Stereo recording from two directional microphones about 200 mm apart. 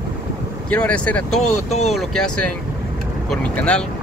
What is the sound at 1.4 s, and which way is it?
Speech, 35° left (ahead or behind).